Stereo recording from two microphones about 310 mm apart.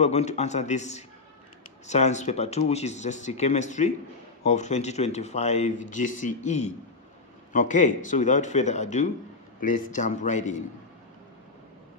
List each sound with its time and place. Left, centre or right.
0.0 s speech: left